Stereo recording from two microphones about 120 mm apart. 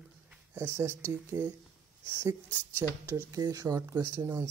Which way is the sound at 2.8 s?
25° right (ahead or behind).